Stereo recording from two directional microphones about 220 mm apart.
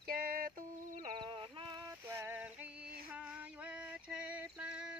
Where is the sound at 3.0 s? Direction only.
5° right (ahead or behind).